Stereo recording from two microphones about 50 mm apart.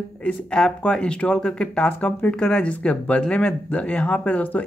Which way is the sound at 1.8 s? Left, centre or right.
Left.